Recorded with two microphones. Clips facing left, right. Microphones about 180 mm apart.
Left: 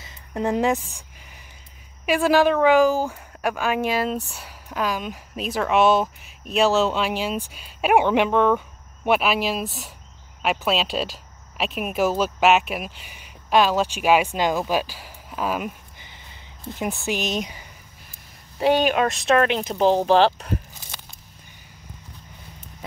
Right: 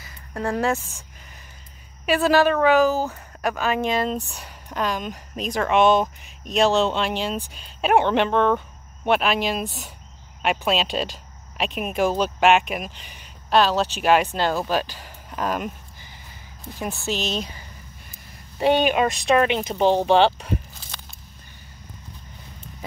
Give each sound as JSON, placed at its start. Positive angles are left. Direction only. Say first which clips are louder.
{"t": 0.0, "sound": "speech", "louder": "left 2 dB", "side_deg": 20}
{"t": 2.0, "sound": "a woman's voice", "louder": "even", "side_deg": 10}
{"t": 16.7, "sound": "a woman's voice", "louder": "left 1 dB", "side_deg": 20}
{"t": 18.6, "sound": "speech", "louder": "even", "side_deg": 0}